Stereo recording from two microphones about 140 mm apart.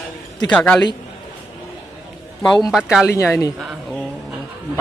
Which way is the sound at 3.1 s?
25° left (ahead or behind).